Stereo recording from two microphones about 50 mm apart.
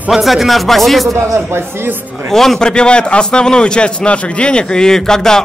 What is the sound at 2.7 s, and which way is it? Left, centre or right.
A man's voice, centre.